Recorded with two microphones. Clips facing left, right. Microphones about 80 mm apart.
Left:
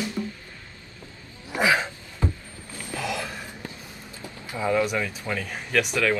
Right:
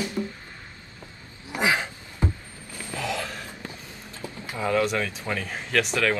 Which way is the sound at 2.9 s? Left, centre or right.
Centre.